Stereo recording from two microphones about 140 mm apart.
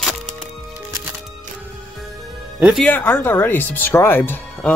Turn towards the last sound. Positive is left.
turn(degrees=15)  # may be behind; listen again after turning